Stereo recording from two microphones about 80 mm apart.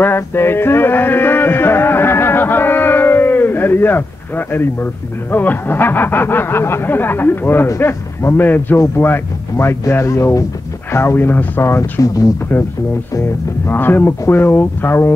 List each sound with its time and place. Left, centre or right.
0.0 s music: left
5.3 s speech: left
11.6 s speech: left
13.7 s speech: left